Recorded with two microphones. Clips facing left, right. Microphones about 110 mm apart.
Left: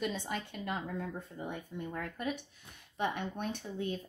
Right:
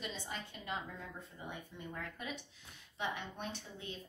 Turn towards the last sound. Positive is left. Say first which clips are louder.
# left 9 dB
turn(degrees=55)  # may be behind; listen again after turning